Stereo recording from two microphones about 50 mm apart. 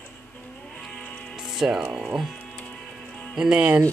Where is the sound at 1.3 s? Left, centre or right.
Centre.